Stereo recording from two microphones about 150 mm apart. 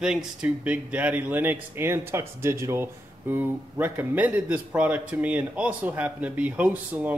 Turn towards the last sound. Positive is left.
turn(degrees=-10)  # may be behind; listen again after turning